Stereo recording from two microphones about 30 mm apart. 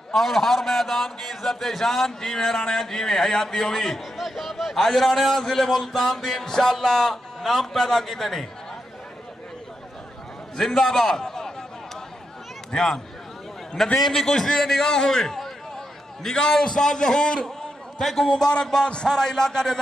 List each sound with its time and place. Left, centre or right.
0.1 s a man's voice: centre
4.2 s a man's voice: centre
10.6 s a man's voice: centre
12.7 s a man's voice: centre
18.0 s a man's voice: centre